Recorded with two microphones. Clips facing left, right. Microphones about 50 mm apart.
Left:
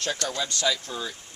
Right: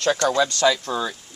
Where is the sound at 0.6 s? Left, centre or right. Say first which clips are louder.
Right 8 dB; right.